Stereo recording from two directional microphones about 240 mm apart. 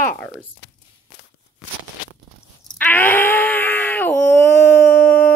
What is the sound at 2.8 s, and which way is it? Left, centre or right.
Wail, centre.